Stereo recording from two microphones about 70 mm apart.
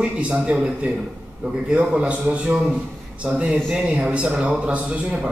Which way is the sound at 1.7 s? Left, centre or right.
Centre.